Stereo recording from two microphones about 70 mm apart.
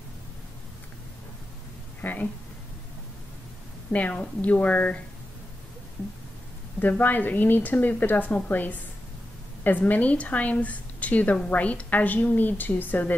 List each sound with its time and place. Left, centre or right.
2.0 s a sound: left
3.9 s a woman's voice: centre
6.8 s a woman's voice: left